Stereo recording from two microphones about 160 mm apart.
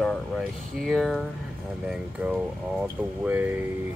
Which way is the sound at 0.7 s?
Centre (ahead or behind).